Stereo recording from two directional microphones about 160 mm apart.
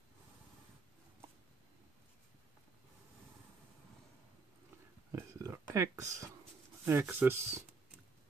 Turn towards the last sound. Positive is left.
turn(degrees=-15)  # may be behind; listen again after turning